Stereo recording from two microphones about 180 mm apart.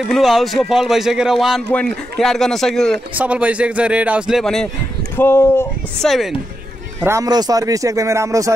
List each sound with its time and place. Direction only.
0.0 s a man's voice: centre (ahead or behind)
5.1 s speech: 15° left (ahead or behind)
6.0 s a man's voice: centre (ahead or behind)
7.1 s speech: 20° right (ahead or behind)